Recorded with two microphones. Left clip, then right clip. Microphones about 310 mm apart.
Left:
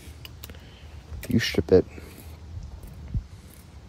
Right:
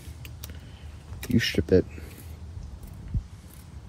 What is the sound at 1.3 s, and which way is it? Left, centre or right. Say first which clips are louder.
Speech: left 3 dB; centre.